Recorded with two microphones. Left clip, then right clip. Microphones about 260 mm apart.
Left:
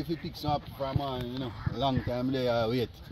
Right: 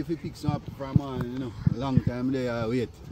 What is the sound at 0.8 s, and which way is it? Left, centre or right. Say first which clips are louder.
Speech: even; centre.